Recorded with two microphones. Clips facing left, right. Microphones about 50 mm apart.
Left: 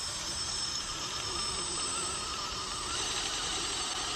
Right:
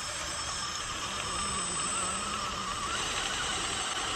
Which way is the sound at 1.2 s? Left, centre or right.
Right.